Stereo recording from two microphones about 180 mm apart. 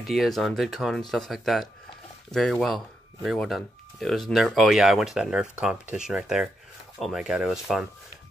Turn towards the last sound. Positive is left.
turn(degrees=-5)  # may be behind; listen again after turning